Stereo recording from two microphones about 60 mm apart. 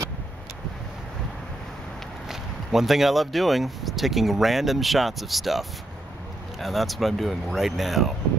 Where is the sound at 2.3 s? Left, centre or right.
Centre.